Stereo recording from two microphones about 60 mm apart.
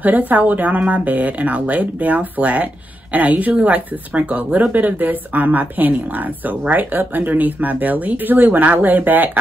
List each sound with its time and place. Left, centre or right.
0.3 s speech: right